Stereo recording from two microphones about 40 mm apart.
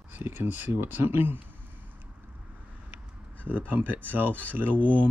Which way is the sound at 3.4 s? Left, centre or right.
Right.